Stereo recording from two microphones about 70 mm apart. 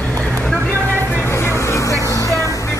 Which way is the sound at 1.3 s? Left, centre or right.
Left.